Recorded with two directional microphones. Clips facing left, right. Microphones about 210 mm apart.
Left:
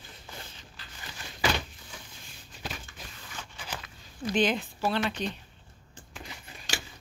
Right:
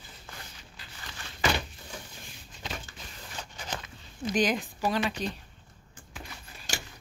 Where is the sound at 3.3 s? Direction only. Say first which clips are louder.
Right 2 dB; 40° right (ahead or behind).